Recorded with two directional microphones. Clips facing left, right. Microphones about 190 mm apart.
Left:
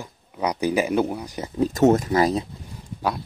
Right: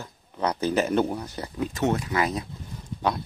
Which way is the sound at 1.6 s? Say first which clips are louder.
Left 8 dB; 45° left (ahead or behind).